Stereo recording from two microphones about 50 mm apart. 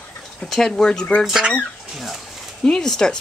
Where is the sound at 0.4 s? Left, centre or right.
Centre.